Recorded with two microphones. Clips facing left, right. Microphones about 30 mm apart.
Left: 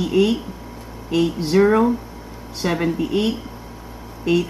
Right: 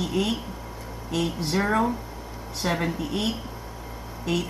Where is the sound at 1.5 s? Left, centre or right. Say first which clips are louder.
Left 9 dB; centre.